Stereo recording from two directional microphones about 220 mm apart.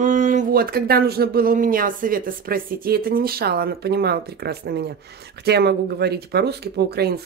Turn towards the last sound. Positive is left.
turn(degrees=-45)  # may be behind; listen again after turning